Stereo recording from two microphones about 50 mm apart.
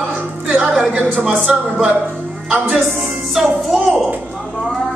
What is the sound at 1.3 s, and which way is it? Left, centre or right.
A man's voice, right.